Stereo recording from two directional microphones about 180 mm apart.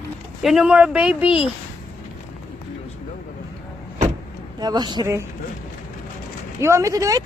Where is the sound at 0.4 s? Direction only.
Centre (ahead or behind).